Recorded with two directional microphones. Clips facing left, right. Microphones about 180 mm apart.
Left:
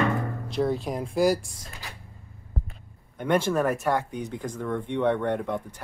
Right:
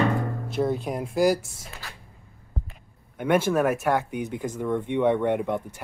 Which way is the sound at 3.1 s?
10° right (ahead or behind).